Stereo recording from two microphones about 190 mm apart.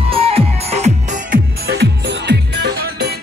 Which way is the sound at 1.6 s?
60° right (ahead or behind).